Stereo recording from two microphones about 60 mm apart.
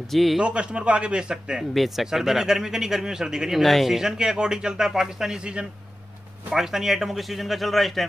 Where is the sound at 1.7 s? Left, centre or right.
Centre.